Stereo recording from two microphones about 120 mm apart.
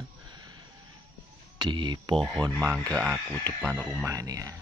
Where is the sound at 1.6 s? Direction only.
40° right (ahead or behind).